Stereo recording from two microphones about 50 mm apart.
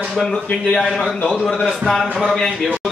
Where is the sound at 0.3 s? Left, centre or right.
Centre.